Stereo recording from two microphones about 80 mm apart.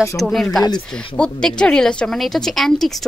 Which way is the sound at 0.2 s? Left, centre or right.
Centre.